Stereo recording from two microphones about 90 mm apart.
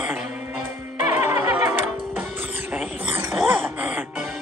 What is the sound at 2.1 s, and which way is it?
Music, 20° right (ahead or behind).